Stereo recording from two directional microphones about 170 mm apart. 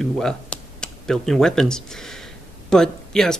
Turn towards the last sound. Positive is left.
turn(degrees=5)  # may be behind; listen again after turning